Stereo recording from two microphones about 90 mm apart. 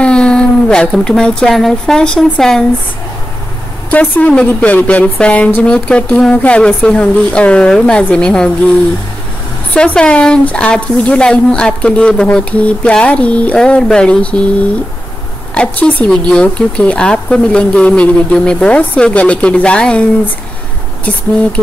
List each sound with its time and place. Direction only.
0.0 s speech: 10° left (ahead or behind)
3.9 s speech: 15° left (ahead or behind)
9.8 s speech: 10° left (ahead or behind)
15.5 s speech: 15° left (ahead or behind)